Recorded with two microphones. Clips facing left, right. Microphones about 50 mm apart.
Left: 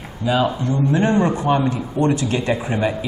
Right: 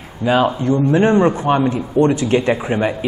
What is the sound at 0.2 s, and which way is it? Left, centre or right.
A man's voice, right.